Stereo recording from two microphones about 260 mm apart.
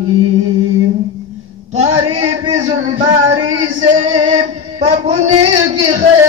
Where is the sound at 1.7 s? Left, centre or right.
Right.